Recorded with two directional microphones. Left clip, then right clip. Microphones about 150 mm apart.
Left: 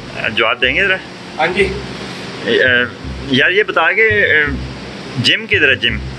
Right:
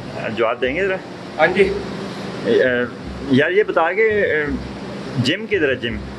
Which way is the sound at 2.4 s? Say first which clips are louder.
Left 4 dB; 10° right (ahead or behind).